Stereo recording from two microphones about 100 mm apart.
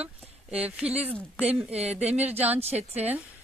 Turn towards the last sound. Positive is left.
turn(degrees=-90)